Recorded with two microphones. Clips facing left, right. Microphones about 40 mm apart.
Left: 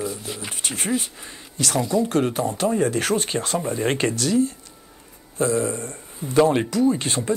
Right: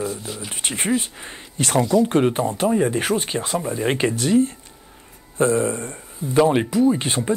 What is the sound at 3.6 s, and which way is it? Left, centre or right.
Speech, centre.